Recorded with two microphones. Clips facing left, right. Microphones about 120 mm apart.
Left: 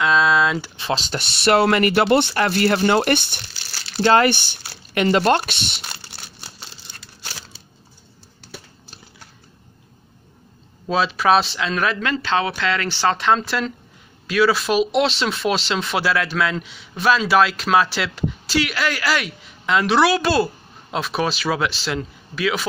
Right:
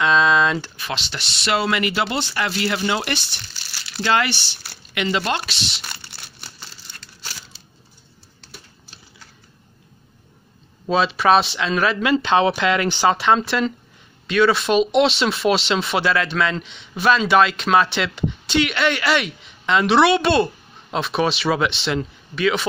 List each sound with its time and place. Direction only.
0.0 s a sound: 5° left (ahead or behind)
0.7 s speech: 30° left (ahead or behind)
1.1 s speech: 55° left (ahead or behind)
3.9 s speech: 40° left (ahead or behind)
10.9 s speech: centre (ahead or behind)
12.2 s speech: 20° right (ahead or behind)
13.2 s speech: centre (ahead or behind)